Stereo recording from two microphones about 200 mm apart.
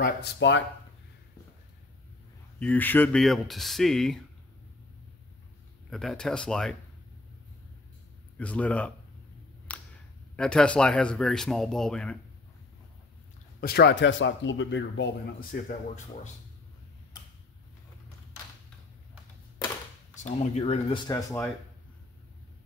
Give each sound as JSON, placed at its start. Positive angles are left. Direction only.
{"t": 0.0, "sound": "speech", "side_deg": 60}
{"t": 2.6, "sound": "speech", "side_deg": 10}
{"t": 5.9, "sound": "speech", "side_deg": 0}
{"t": 8.4, "sound": "speech", "side_deg": 5}
{"t": 9.7, "sound": "a sound", "side_deg": 10}
{"t": 10.3, "sound": "speech", "side_deg": 5}
{"t": 13.6, "sound": "speech", "side_deg": 50}
{"t": 20.2, "sound": "speech", "side_deg": 35}